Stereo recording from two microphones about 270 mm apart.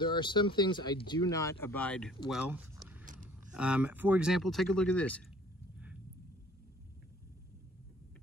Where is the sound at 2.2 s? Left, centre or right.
Centre.